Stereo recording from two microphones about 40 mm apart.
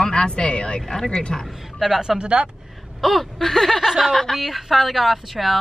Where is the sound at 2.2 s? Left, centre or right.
Right.